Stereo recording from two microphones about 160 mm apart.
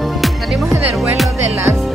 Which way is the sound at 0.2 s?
Centre (ahead or behind).